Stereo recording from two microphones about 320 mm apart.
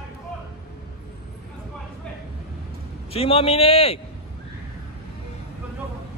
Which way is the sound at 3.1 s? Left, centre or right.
Centre.